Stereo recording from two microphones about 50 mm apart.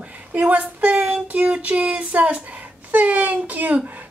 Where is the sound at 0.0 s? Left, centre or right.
Right.